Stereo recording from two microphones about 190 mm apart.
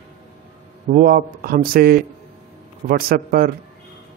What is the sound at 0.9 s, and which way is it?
Speech, 45° right (ahead or behind).